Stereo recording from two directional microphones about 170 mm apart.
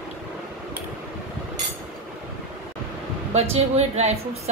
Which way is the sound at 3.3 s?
40° right (ahead or behind).